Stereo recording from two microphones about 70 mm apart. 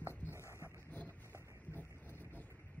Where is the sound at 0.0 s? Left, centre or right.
Left.